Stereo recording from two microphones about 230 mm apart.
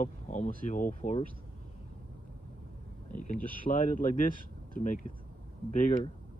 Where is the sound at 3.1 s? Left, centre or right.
Left.